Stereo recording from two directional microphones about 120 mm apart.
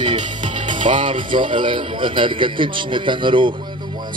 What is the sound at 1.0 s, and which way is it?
A man's voice, 45° right (ahead or behind).